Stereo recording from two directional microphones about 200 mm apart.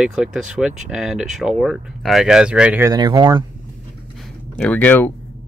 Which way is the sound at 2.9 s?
20° right (ahead or behind).